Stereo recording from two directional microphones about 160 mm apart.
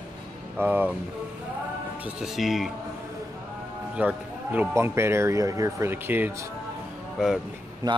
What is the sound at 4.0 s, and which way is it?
Speech, 10° right (ahead or behind).